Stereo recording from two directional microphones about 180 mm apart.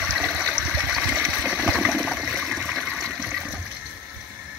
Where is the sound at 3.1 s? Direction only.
10° right (ahead or behind).